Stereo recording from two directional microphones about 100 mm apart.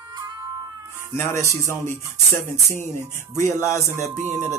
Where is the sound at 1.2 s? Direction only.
25° left (ahead or behind).